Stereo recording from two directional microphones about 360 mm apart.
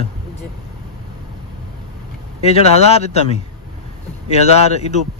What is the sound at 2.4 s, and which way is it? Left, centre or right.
Speech, centre.